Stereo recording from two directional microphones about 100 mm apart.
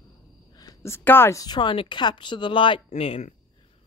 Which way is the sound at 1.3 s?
45° left (ahead or behind).